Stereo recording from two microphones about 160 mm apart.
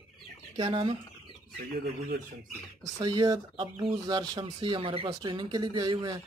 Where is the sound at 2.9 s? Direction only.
25° right (ahead or behind).